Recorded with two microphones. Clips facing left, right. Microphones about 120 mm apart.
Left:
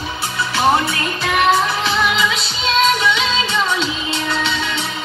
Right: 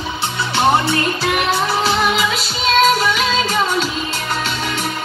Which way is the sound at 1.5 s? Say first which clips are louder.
Right 1 dB; 35° right (ahead or behind).